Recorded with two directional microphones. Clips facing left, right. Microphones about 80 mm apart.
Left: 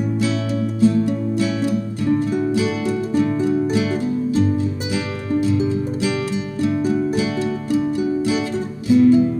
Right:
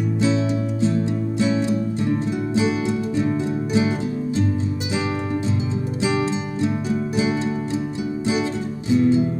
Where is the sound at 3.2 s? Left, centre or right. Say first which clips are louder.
Left 4 dB; right.